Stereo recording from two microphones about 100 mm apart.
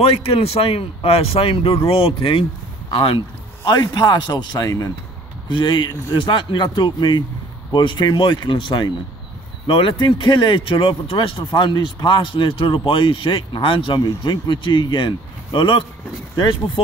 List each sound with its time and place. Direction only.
0.0 s speech: 75° left (ahead or behind); by 3.2 s 60° left (ahead or behind)
3.6 s speech: 45° left (ahead or behind)
5.5 s speech: 50° left (ahead or behind)
9.7 s speech: 60° left (ahead or behind)